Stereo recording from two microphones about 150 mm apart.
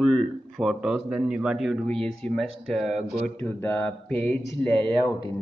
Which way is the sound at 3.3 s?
15° left (ahead or behind).